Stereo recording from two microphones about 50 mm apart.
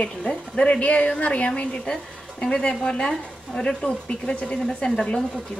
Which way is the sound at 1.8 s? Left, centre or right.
Centre.